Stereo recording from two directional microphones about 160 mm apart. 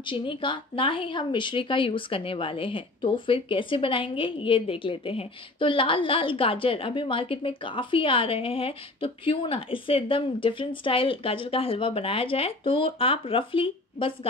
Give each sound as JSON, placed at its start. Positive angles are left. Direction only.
{"t": 0.0, "sound": "speech", "side_deg": 30}